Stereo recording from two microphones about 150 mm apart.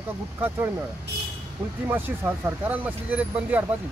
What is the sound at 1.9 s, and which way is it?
Speech, 10° right (ahead or behind).